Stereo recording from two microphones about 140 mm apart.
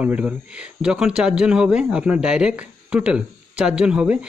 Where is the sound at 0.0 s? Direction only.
10° right (ahead or behind).